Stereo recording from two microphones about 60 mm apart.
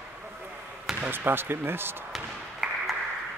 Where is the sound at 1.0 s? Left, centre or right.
Right.